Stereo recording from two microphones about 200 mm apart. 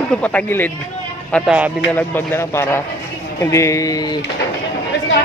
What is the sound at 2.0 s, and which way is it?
Speech, 10° left (ahead or behind).